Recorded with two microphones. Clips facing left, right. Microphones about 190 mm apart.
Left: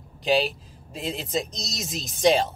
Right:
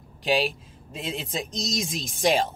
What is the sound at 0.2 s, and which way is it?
Speech, centre (ahead or behind).